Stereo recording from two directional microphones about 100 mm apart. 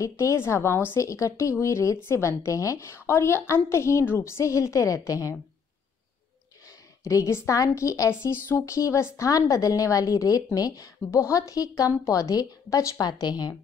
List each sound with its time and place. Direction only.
0.0 s a woman's voice: 30° left (ahead or behind)
7.1 s a woman's voice: 30° left (ahead or behind)